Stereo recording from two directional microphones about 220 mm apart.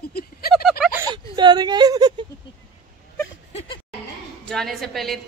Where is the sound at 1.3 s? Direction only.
20° right (ahead or behind).